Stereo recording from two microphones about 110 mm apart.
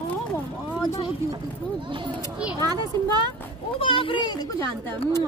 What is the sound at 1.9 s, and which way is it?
A child's voice, 45° right (ahead or behind).